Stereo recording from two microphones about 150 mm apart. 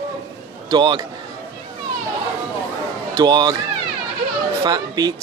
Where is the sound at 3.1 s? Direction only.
25° right (ahead or behind).